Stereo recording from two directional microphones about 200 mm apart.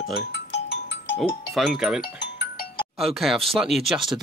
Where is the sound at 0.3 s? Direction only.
60° left (ahead or behind).